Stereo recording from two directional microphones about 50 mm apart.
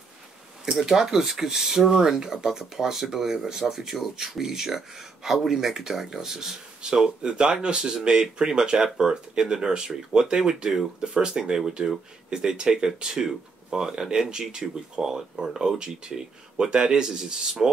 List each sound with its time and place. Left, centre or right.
0.7 s speech: centre